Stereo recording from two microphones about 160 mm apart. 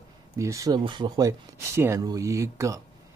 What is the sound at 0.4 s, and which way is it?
Speech, 20° right (ahead or behind).